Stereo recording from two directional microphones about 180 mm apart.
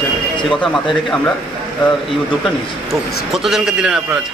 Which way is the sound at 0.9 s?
Centre (ahead or behind).